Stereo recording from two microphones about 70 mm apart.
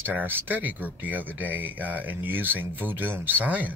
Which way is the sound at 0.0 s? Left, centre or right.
Right.